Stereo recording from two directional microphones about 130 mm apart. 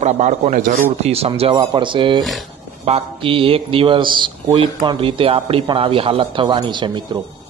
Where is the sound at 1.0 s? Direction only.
50° right (ahead or behind).